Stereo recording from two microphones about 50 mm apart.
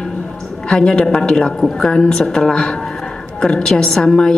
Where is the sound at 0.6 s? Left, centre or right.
Centre.